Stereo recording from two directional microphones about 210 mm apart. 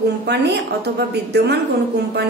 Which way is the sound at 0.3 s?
50° right (ahead or behind).